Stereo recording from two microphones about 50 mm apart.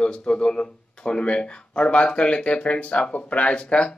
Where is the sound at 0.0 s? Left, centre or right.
Centre.